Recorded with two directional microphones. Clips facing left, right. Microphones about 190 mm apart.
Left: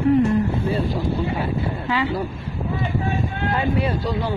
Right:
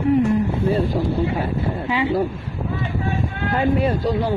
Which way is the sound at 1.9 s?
15° right (ahead or behind).